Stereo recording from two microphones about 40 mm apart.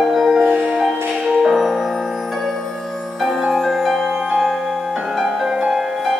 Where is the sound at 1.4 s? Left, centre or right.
Centre.